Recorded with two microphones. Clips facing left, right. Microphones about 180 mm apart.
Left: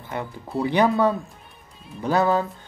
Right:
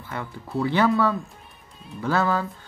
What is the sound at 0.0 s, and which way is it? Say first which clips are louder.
Speech: left 3 dB; 20° left (ahead or behind).